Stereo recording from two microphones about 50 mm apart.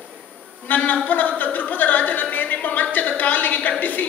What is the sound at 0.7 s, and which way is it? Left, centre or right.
Speech, left.